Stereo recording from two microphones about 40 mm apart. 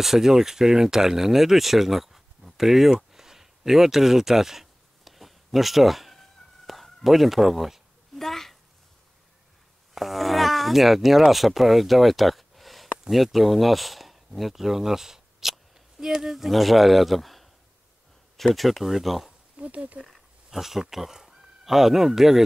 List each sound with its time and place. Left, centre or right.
0.0 s speech: centre
8.2 s a sound: centre
9.9 s speech: centre
19.6 s speech: right
20.4 s speech: centre